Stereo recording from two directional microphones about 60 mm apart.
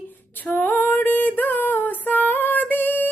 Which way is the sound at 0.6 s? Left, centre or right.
Left.